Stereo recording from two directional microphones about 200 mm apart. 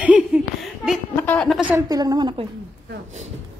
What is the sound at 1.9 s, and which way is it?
Speech, 20° right (ahead or behind).